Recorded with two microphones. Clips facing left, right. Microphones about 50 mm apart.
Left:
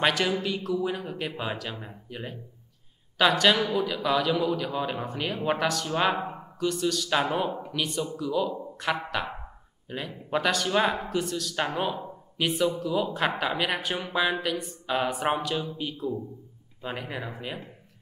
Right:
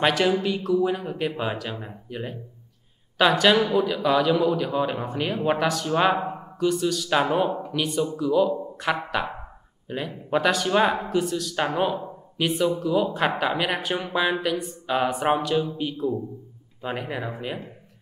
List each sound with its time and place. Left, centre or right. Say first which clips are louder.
0.0 s speech: right 4 dB; centre